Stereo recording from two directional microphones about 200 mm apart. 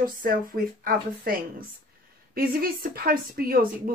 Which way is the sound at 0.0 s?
45° right (ahead or behind).